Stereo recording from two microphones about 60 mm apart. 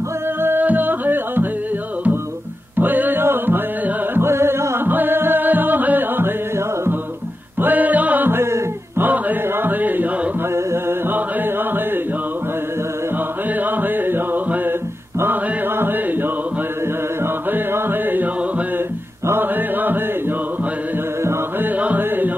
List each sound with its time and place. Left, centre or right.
0.4 s music: right
2.8 s music: right
4.8 s music: right
7.6 s music: right
8.3 s music: right
9.0 s music: right
10.5 s carnatic music: right
11.1 s a sound: right
13.5 s music: right
15.4 s a sound: right
17.2 s music: right
19.4 s music: right
21.2 s music: right
21.6 s a sound: right